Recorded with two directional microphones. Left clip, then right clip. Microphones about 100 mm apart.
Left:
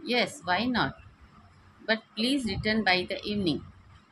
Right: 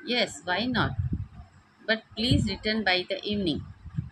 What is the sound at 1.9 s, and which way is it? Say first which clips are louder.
A woman's voice: right 1 dB; 5° left (ahead or behind).